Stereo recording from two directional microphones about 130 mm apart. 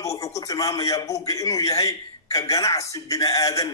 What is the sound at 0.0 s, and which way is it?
A man's voice, 25° left (ahead or behind).